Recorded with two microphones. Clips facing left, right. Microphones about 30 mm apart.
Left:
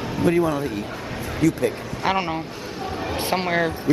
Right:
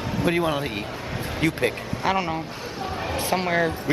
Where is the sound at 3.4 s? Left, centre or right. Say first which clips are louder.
Even; centre.